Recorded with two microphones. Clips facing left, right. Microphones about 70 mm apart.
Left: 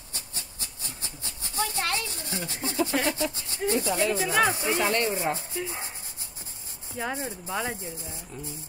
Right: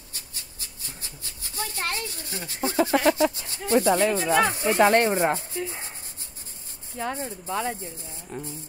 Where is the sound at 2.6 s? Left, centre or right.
Right.